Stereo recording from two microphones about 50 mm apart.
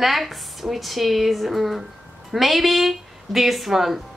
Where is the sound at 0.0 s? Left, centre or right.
Centre.